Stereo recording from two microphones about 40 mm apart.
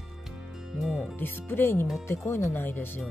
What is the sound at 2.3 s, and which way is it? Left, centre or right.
Speech, left.